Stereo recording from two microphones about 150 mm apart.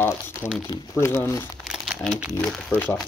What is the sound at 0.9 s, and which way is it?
Speech, 20° left (ahead or behind).